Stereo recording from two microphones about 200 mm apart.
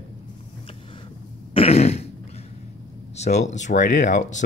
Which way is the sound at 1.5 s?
30° left (ahead or behind).